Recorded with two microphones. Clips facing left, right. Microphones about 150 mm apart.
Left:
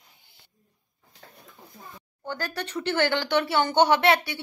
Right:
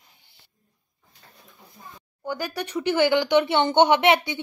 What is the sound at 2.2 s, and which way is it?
Speech, 10° right (ahead or behind).